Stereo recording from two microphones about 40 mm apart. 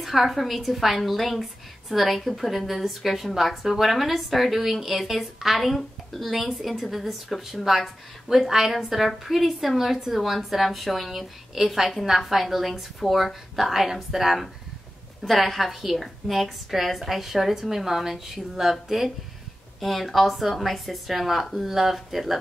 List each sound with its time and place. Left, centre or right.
0.0 s a woman's voice: centre
19.8 s a woman's voice: centre